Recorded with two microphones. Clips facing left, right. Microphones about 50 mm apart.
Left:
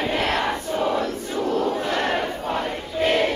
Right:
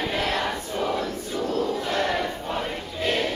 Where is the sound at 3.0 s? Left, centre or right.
Left.